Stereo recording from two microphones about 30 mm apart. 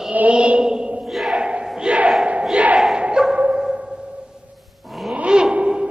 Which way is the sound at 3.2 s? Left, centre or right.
Right.